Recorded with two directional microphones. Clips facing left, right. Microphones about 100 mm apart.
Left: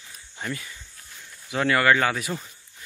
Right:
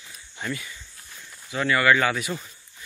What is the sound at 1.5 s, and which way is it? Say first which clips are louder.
Speech: left 1 dB; 60° left (ahead or behind).